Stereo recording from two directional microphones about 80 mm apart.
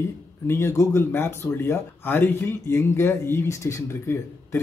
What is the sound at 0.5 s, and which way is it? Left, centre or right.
Speech, left.